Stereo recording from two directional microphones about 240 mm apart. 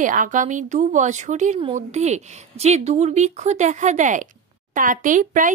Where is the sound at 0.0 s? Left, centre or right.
Right.